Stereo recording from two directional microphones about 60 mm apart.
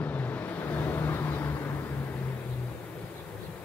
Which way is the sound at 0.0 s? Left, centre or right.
Left.